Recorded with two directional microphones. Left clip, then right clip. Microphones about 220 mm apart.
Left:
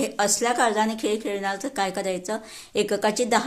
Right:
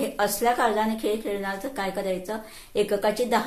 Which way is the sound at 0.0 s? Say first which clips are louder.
Even; 45° left (ahead or behind).